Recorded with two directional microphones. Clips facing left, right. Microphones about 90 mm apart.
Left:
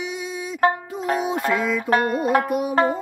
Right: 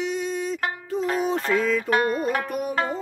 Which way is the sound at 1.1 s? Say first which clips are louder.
Left 2 dB; 10° left (ahead or behind).